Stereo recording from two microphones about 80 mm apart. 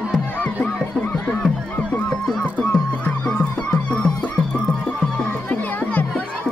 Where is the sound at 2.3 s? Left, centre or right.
Centre.